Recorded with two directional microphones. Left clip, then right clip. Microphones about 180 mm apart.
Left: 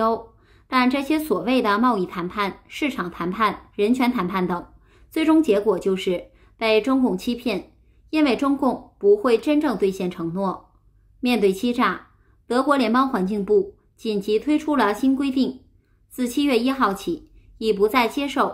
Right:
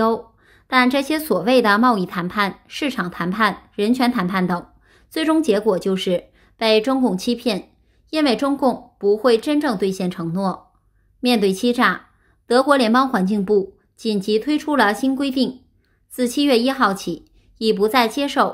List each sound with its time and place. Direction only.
0.0 s a woman's voice: 35° right (ahead or behind)